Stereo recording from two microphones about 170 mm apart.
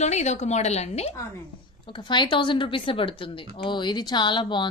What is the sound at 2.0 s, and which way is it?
A woman's voice, 25° left (ahead or behind).